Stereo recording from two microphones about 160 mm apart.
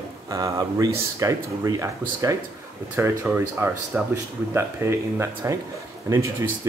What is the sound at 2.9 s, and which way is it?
Speech, 15° right (ahead or behind).